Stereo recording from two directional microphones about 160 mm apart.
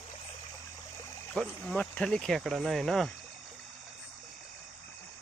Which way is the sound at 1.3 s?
5° left (ahead or behind).